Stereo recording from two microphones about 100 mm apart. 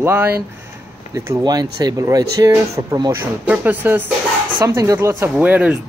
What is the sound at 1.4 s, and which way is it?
Speech, 40° right (ahead or behind).